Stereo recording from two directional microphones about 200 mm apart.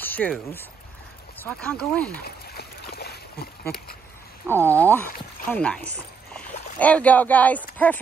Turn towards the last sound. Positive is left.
turn(degrees=10)  # may be behind; listen again after turning